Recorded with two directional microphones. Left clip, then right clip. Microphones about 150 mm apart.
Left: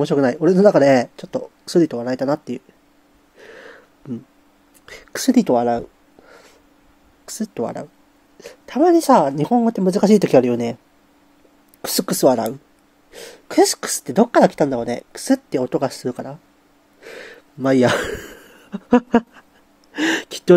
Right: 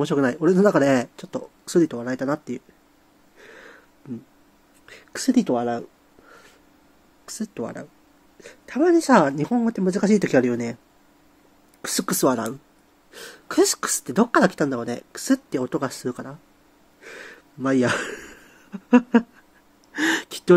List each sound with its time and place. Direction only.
0.0 s speech: 15° left (ahead or behind)
3.3 s throat clearing: 20° left (ahead or behind)
4.0 s speech: 30° left (ahead or behind)
4.8 s a sound: 30° left (ahead or behind)
7.2 s a woman's voice: 25° left (ahead or behind)
11.8 s speech: 20° left (ahead or behind)
12.1 s speech: 10° left (ahead or behind)
17.0 s gasp: 20° left (ahead or behind)
19.9 s speech: 20° left (ahead or behind)